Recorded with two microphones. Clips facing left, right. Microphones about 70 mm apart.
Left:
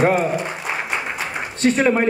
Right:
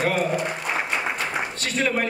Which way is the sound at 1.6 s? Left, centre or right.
Left.